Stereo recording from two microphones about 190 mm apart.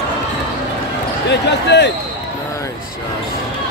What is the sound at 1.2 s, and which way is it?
Basketball bounce, 65° left (ahead or behind).